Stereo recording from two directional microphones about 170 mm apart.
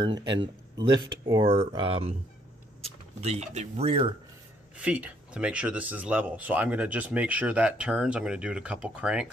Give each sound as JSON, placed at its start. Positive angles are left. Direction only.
{"t": 0.0, "sound": "speech", "side_deg": -25}
{"t": 4.7, "sound": "speech", "side_deg": -10}